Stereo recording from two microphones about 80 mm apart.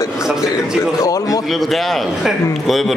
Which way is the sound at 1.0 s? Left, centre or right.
Left.